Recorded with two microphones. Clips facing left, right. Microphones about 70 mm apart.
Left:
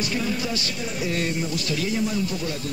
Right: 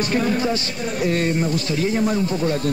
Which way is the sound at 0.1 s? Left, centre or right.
Right.